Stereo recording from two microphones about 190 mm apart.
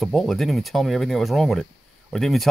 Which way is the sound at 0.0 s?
Centre (ahead or behind).